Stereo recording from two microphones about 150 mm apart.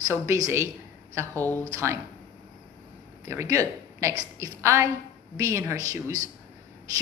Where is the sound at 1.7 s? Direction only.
20° right (ahead or behind).